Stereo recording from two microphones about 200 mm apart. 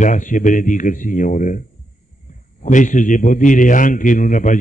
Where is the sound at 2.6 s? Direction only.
40° left (ahead or behind).